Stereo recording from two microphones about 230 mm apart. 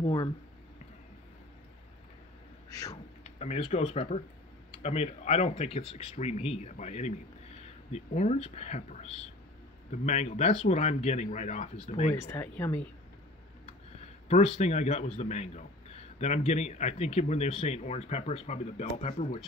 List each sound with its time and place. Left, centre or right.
0.0 s speech: centre
2.7 s speech: centre
3.3 s speech: left
12.3 s speech: centre
13.7 s speech: left